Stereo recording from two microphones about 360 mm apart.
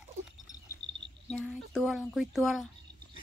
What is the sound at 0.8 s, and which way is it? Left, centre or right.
Cricket, centre.